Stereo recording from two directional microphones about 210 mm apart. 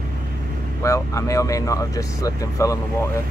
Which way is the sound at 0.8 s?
15° left (ahead or behind).